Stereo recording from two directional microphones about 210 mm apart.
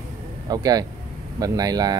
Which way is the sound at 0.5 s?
20° right (ahead or behind).